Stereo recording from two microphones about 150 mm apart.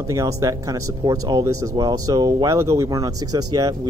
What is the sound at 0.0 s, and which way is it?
Speech, 20° right (ahead or behind).